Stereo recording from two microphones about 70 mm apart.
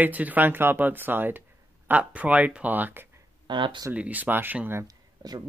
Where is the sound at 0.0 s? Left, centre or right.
Right.